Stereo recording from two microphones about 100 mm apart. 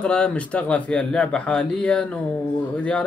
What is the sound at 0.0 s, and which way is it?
Speech, 10° left (ahead or behind).